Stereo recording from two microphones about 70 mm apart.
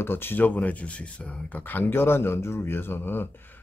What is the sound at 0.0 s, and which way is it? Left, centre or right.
Speech, left.